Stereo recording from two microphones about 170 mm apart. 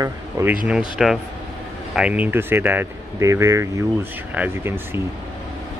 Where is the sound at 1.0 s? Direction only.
Centre (ahead or behind).